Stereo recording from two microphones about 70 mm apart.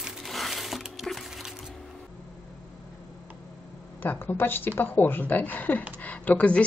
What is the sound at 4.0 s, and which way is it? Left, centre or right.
A woman's voice, left.